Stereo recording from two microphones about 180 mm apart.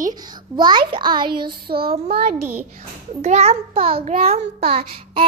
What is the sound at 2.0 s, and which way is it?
A child's voice, 35° right (ahead or behind).